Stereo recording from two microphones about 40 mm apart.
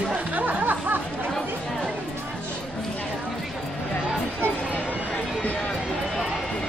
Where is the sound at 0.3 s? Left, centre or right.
Right.